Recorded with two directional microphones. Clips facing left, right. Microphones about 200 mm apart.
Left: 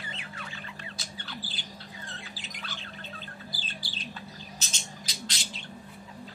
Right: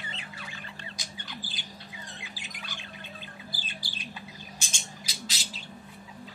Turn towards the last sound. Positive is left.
turn(degrees=-5)  # may be behind; listen again after turning